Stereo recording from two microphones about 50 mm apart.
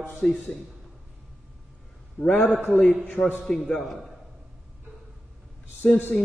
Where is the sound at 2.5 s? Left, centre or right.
Right.